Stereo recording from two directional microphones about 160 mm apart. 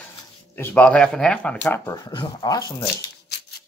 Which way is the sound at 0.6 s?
5° left (ahead or behind).